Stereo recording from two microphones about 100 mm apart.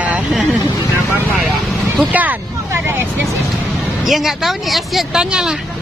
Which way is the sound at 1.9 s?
15° right (ahead or behind).